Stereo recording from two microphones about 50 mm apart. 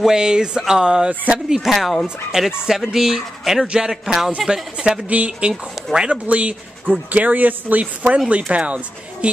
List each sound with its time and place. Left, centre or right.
0.0 s speech: centre
1.7 s speech: centre
3.6 s speech: centre
3.9 s speech: centre; by 9.3 s right